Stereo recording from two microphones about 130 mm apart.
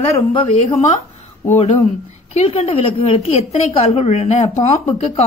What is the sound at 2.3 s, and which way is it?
Speech, 50° left (ahead or behind).